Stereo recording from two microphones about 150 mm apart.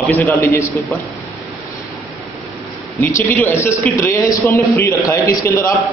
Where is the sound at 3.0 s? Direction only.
15° left (ahead or behind).